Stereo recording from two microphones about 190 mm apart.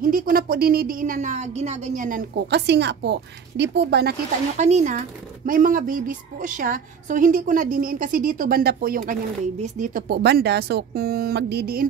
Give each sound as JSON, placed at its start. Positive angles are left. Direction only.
{"t": 0.0, "sound": "speech", "side_deg": -50}
{"t": 2.5, "sound": "a woman's voice", "side_deg": -65}
{"t": 4.6, "sound": "speech", "side_deg": -35}
{"t": 10.0, "sound": "a woman's voice", "side_deg": -60}